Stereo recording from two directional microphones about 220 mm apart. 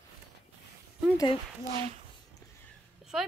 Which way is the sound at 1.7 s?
30° right (ahead or behind).